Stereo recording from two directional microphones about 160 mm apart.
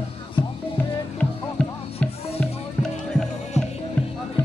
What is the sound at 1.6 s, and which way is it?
Music, 5° left (ahead or behind).